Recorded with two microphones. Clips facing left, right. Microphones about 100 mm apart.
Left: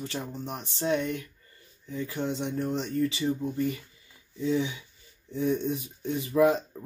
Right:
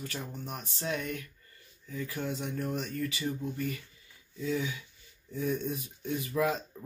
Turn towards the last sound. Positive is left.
turn(degrees=30)  # may be behind; listen again after turning